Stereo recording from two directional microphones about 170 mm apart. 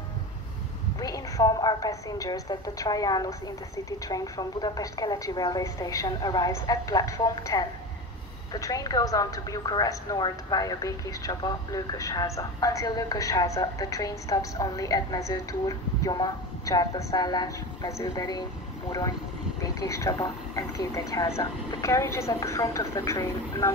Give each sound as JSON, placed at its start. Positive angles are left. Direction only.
{"t": 0.9, "sound": "a woman's voice", "side_deg": 20}